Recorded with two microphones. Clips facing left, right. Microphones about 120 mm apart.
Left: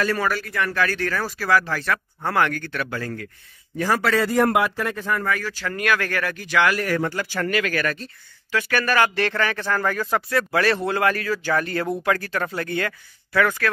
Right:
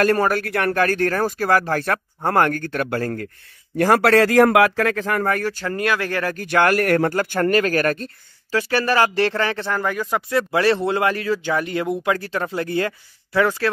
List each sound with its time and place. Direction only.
0.0 s speech: 50° right (ahead or behind)
3.7 s a man's voice: 60° right (ahead or behind); by 5.2 s 90° right
5.2 s speech: 50° right (ahead or behind)
5.7 s speech: 25° right (ahead or behind)
6.3 s speech: 50° right (ahead or behind); by 10.2 s 15° right (ahead or behind)
10.3 s speech: 25° right (ahead or behind)